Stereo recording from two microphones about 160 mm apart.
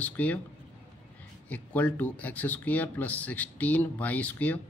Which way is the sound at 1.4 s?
10° left (ahead or behind).